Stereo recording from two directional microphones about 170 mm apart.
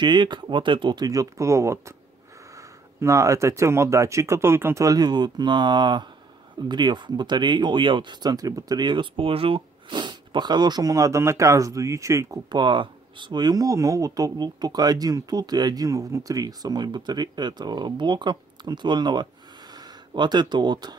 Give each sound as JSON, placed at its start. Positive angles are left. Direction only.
{"t": 0.0, "sound": "speech", "side_deg": -25}